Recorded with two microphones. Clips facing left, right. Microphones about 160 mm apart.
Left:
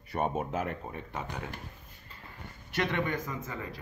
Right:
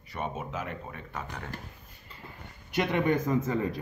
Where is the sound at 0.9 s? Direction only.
25° left (ahead or behind).